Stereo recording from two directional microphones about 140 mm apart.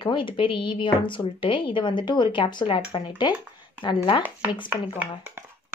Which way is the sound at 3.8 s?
35° left (ahead or behind).